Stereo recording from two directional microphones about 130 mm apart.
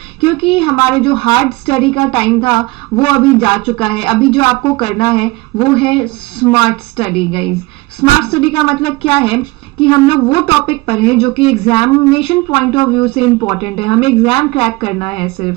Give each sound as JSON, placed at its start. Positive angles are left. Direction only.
{"t": 0.4, "sound": "a man's voice", "side_deg": 45}